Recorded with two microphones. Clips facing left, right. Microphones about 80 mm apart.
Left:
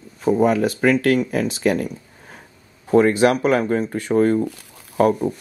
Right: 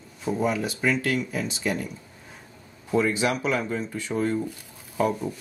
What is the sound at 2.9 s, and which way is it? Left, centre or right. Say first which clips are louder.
Speech: left 9 dB; left.